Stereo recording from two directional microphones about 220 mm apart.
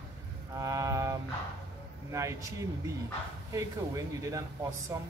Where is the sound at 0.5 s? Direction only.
15° right (ahead or behind).